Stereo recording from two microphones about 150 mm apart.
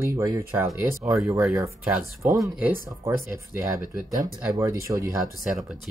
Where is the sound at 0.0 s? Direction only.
20° right (ahead or behind).